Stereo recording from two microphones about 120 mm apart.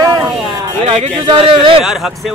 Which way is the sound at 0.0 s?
30° right (ahead or behind).